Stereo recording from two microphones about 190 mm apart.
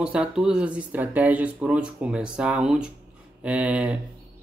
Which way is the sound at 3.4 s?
5° right (ahead or behind).